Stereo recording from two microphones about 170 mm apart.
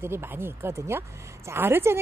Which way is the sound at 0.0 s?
15° right (ahead or behind).